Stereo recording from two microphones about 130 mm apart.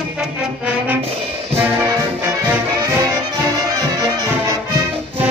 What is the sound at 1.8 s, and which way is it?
Brass instrument, 20° right (ahead or behind).